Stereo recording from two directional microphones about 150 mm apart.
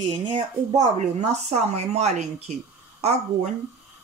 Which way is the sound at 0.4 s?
50° right (ahead or behind).